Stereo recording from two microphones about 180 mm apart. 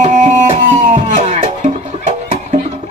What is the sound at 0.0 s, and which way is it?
Music, 40° right (ahead or behind).